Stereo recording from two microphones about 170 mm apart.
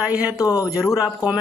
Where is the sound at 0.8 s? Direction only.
5° right (ahead or behind).